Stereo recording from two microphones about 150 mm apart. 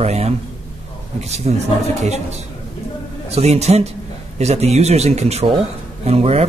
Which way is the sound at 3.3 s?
45° right (ahead or behind).